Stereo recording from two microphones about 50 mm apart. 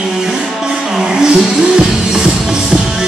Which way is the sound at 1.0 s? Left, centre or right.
Centre.